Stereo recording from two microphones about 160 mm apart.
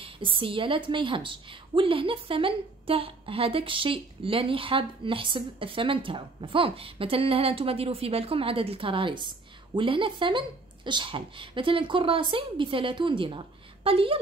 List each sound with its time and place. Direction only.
0.0 s a woman's voice: 30° right (ahead or behind)